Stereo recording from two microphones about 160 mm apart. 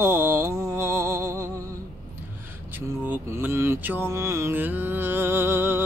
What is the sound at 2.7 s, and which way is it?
Mantra, 10° right (ahead or behind).